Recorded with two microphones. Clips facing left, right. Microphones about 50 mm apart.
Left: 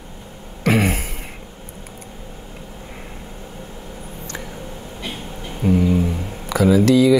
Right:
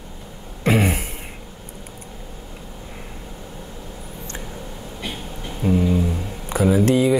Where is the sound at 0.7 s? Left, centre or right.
Left.